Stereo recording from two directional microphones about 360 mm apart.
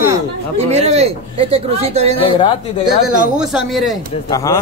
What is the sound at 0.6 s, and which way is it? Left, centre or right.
Speech, centre.